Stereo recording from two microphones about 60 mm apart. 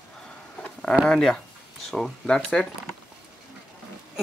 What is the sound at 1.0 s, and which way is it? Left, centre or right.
Speech, centre.